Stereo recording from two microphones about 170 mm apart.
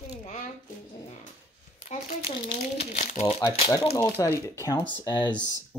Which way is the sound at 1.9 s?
45° left (ahead or behind).